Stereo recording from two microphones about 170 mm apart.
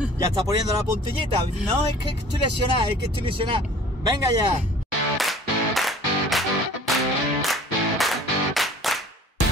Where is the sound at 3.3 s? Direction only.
30° right (ahead or behind).